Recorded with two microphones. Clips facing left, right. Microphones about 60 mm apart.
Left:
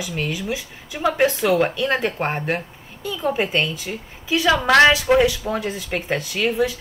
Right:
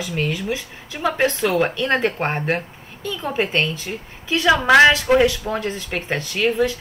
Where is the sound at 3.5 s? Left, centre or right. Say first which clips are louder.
Right 1 dB; centre.